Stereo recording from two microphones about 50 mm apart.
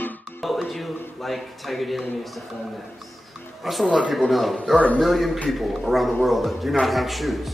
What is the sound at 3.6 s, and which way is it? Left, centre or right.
A woman's voice, centre.